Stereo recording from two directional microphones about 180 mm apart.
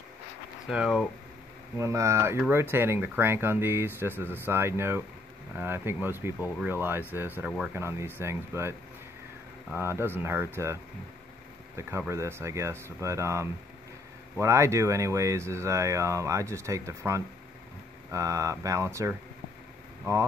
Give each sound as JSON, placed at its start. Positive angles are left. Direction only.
{"t": 0.7, "sound": "speech", "side_deg": -5}
{"t": 1.8, "sound": "speech", "side_deg": -15}
{"t": 9.8, "sound": "speech", "side_deg": -15}
{"t": 12.1, "sound": "speech", "side_deg": -15}